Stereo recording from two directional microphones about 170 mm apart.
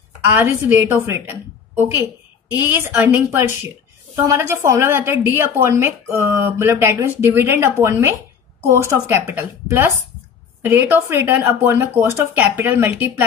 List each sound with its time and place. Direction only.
0.2 s a woman's voice: 15° right (ahead or behind)